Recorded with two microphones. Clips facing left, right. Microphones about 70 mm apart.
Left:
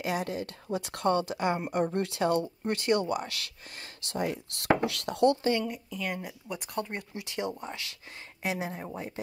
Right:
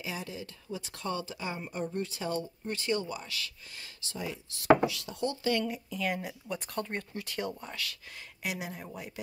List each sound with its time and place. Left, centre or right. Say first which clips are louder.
0.0 s speech: left 8 dB; left
2.6 s speech: left 5 dB; left
5.7 s speech: right 1 dB; centre; by 7.9 s left
8.4 s speech: left 5 dB; left